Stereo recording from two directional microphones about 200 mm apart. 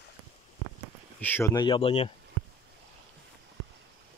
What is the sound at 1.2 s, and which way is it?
Speech, 10° left (ahead or behind).